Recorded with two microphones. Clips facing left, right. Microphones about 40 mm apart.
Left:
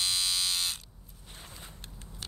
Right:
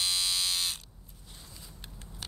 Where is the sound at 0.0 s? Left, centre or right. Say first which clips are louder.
Even; centre.